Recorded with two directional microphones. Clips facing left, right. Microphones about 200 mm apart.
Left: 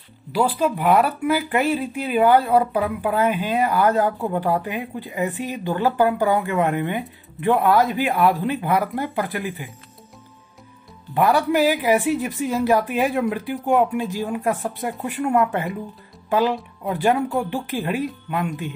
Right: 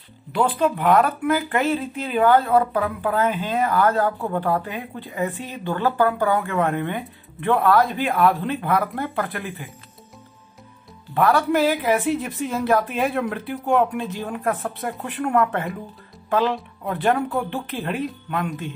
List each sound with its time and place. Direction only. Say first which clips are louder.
0.3 s speech: even; 5° left (ahead or behind)
9.4 s speech: left 3 dB; centre (ahead or behind)
11.1 s speech: left 1 dB; 15° left (ahead or behind)
13.2 s speech: left 3 dB; centre (ahead or behind)